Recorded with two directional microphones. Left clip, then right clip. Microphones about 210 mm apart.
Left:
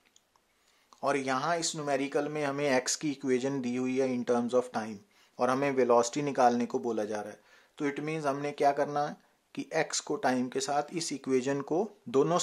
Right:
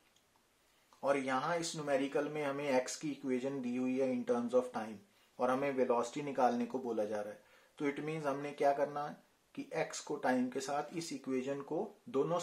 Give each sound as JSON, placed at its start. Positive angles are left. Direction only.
{"t": 1.0, "sound": "speech", "side_deg": 40}